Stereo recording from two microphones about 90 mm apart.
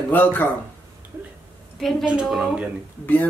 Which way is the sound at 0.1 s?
20° left (ahead or behind).